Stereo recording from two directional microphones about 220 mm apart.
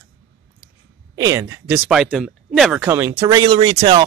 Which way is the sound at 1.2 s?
15° right (ahead or behind).